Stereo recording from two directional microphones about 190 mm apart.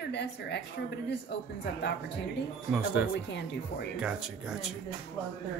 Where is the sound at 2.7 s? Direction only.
5° right (ahead or behind).